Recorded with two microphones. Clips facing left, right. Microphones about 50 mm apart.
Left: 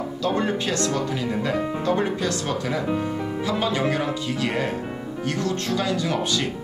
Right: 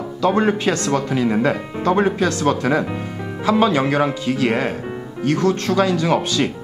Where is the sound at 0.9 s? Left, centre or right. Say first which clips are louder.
Right 7 dB; right.